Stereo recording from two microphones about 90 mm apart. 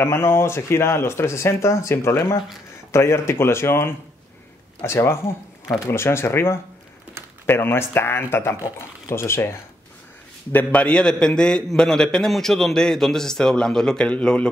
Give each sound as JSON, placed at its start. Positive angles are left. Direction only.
{"t": 0.0, "sound": "speech", "side_deg": 30}
{"t": 10.5, "sound": "a man's voice", "side_deg": 20}